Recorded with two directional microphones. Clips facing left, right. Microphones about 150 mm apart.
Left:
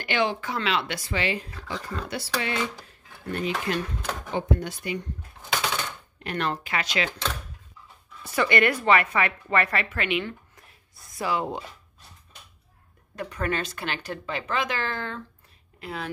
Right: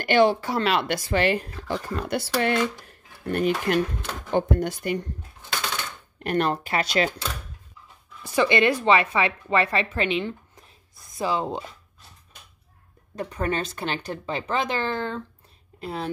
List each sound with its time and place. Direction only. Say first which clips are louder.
0.0 s speech: right 7 dB; 45° right (ahead or behind)
6.2 s a woman's voice: right 5 dB; 45° right (ahead or behind)
8.2 s a woman's voice: right 2 dB; 20° right (ahead or behind)
13.1 s a woman's voice: right 2 dB; 30° right (ahead or behind)